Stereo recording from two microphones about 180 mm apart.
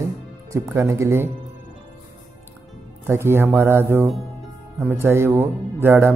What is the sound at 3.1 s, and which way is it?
A man's voice, 15° right (ahead or behind).